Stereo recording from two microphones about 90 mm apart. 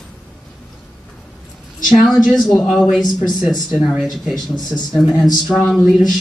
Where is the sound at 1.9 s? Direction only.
Centre (ahead or behind).